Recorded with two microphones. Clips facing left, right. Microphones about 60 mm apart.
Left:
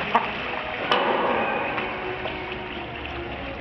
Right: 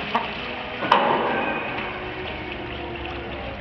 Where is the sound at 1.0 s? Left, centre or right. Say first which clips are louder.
Right 1 dB; centre.